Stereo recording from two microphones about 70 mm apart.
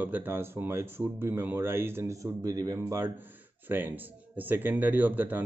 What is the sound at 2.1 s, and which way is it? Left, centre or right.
Speech, right.